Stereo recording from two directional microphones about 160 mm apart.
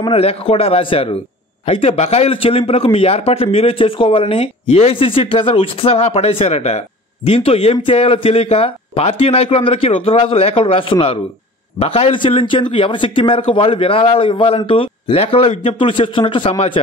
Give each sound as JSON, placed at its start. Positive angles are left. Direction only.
{"t": 0.0, "sound": "speech", "side_deg": 40}